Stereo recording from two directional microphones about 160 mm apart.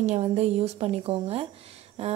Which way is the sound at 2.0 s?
40° right (ahead or behind).